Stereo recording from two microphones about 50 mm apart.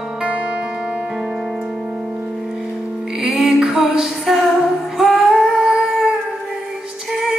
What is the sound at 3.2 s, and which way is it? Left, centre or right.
Music, centre.